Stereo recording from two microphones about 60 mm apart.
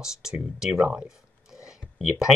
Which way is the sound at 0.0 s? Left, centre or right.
Centre.